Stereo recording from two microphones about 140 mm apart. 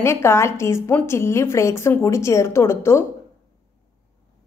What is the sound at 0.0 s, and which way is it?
A woman's voice, 20° left (ahead or behind).